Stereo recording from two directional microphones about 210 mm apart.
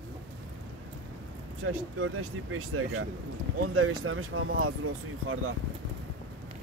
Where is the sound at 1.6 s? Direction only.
75° right (ahead or behind).